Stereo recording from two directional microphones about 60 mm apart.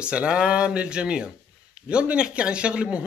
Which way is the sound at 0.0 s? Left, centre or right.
Centre.